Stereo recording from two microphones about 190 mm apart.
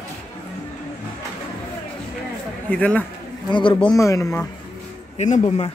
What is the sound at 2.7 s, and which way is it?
Speech, 5° left (ahead or behind).